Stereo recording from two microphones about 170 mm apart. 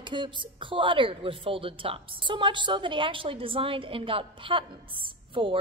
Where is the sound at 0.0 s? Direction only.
30° right (ahead or behind).